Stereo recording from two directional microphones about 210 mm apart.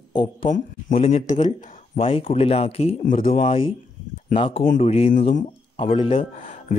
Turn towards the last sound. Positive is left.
turn(degrees=40)  # may be behind; listen again after turning